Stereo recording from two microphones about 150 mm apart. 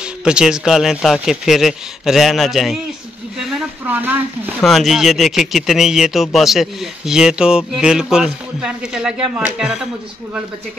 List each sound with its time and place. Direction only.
0.2 s speech: 5° right (ahead or behind)
3.8 s speech: 10° right (ahead or behind)
4.6 s speech: centre (ahead or behind)